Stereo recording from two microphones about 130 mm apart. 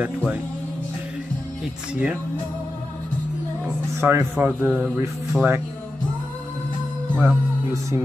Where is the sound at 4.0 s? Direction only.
20° right (ahead or behind).